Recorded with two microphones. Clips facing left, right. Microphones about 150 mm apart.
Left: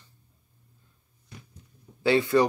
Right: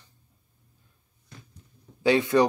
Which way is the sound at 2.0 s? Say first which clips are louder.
Even; 20° right (ahead or behind).